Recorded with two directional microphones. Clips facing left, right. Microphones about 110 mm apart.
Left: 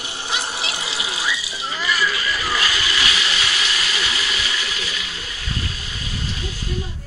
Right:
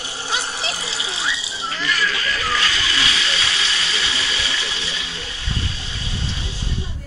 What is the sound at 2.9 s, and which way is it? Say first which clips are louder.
Hiss: even; 30° right (ahead or behind).